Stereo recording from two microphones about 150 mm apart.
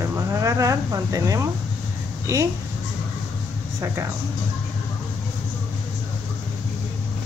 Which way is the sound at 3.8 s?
15° right (ahead or behind).